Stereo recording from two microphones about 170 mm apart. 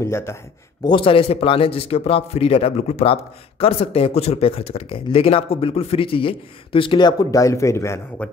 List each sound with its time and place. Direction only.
0.0 s speech: 15° left (ahead or behind)
0.8 s speech: 30° left (ahead or behind)